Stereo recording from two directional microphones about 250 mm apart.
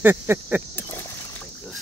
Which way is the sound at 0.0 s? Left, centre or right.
Centre.